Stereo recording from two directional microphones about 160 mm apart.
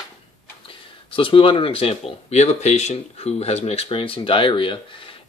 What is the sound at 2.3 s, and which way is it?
Speech, 45° left (ahead or behind).